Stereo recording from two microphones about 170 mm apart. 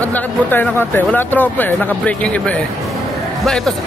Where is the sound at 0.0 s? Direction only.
10° left (ahead or behind).